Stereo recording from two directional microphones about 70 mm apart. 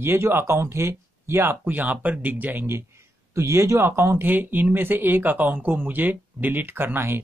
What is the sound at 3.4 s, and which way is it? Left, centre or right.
Speech, right.